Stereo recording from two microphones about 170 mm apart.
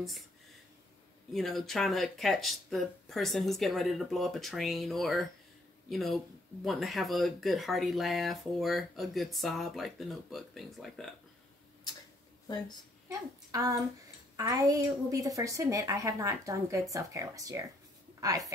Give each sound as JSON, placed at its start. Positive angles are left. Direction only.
{"t": 1.3, "sound": "speech", "side_deg": 0}
{"t": 12.4, "sound": "a woman's voice", "side_deg": 25}
{"t": 13.1, "sound": "a woman's voice", "side_deg": -20}